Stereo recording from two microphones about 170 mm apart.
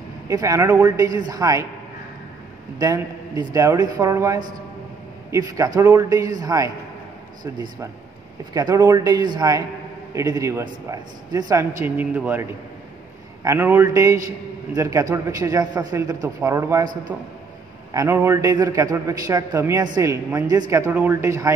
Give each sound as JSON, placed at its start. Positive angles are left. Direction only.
{"t": 0.3, "sound": "a man's voice", "side_deg": -20}
{"t": 2.8, "sound": "a man's voice", "side_deg": -20}
{"t": 11.8, "sound": "a man's voice", "side_deg": -10}